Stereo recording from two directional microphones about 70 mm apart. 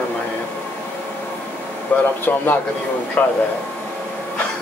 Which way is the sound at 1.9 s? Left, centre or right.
Left.